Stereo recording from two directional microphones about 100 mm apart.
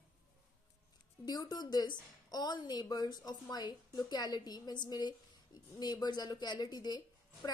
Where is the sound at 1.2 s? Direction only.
40° left (ahead or behind).